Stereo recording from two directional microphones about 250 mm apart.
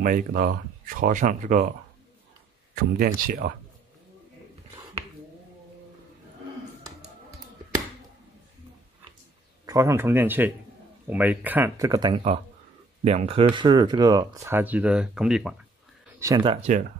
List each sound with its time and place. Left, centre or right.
0.0 s speech: right
2.7 s speech: right
9.7 s speech: centre
16.2 s speech: centre